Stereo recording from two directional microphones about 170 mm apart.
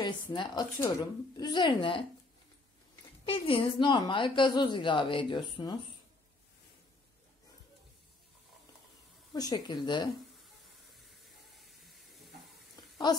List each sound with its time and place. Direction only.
0.0 s a woman's voice: 25° left (ahead or behind)
3.3 s a woman's voice: 30° left (ahead or behind)
9.3 s a woman's voice: 25° left (ahead or behind)
11.0 s steam: centre (ahead or behind)